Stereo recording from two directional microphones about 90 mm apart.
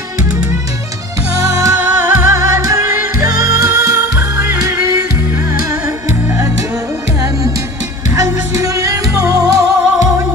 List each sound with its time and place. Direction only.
1.3 s music: 40° right (ahead or behind)
1.8 s music: 20° right (ahead or behind); by 4.0 s 40° right (ahead or behind)
4.2 s music: 30° right (ahead or behind)
8.2 s music: 35° right (ahead or behind)